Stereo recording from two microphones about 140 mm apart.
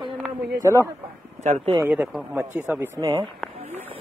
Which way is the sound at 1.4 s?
60° right (ahead or behind).